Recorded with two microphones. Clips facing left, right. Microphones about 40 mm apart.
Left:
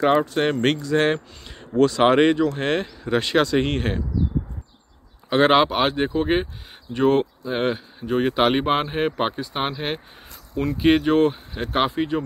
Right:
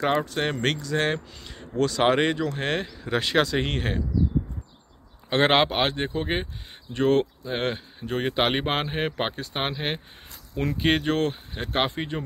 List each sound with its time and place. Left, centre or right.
0.0 s speech: centre
5.3 s speech: centre
5.8 s speech: centre
7.0 s speech: left
7.4 s speech: centre
11.1 s speech: centre
11.6 s speech: centre